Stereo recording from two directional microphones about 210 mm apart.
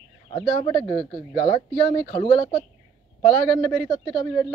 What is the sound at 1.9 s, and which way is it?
Speech, 25° left (ahead or behind).